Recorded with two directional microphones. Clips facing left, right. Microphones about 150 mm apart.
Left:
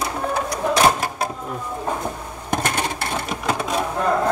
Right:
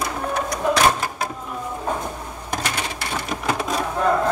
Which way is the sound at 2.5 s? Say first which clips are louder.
Left 4 dB; 50° left (ahead or behind).